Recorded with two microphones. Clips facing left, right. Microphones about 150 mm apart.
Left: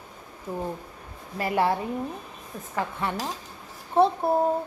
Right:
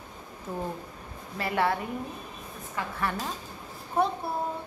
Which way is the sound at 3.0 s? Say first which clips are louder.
Left 2 dB; 20° left (ahead or behind).